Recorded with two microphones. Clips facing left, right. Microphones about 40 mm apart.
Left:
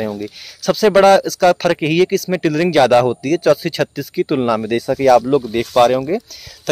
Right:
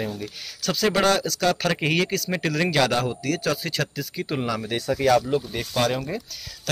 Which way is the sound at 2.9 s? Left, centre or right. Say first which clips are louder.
Left 12 dB; left.